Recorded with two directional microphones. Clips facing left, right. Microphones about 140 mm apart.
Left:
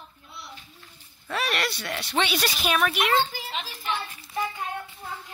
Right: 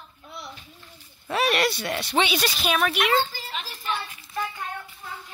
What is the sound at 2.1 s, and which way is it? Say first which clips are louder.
A woman's voice: right 2 dB; 5° right (ahead or behind).